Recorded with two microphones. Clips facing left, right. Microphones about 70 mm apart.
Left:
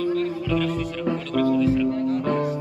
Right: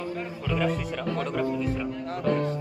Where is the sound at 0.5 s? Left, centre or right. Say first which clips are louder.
Even; centre.